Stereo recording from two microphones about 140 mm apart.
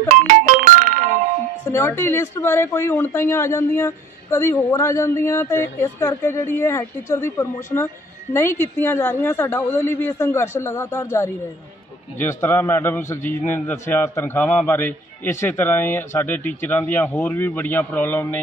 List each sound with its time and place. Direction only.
0.1 s music: 65° right (ahead or behind)
1.7 s speech: 15° left (ahead or behind)